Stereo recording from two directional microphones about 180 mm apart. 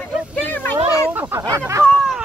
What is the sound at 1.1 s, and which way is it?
Speech, 10° right (ahead or behind).